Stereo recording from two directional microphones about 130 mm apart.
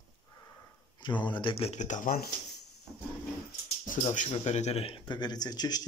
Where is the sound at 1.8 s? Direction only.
75° left (ahead or behind).